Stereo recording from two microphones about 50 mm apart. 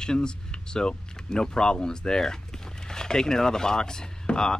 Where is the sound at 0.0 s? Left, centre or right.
Centre.